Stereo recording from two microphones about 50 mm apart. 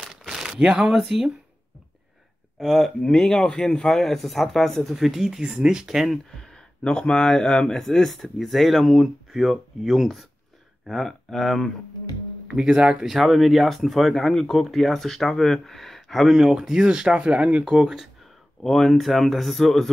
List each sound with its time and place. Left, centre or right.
0.3 s a sound: centre
0.7 s speech: centre
2.6 s speech: centre
3.0 s speech: centre
4.9 s speech: centre
6.3 s speech: centre
10.9 s speech: centre
12.4 s speech: centre
13.0 s speech: centre
18.6 s speech: centre